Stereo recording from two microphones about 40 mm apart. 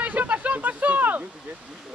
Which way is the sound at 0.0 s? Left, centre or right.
Right.